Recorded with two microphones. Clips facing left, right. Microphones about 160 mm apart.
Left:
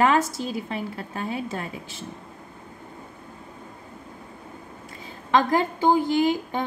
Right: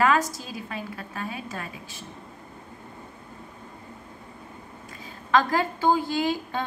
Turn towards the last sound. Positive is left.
turn(degrees=15)  # may be behind; listen again after turning